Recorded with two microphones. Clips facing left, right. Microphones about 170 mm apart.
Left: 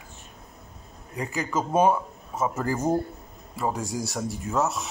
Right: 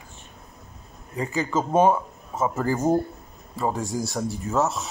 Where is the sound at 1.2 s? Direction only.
25° right (ahead or behind).